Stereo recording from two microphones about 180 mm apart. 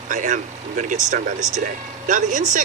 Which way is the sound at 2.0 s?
45° right (ahead or behind).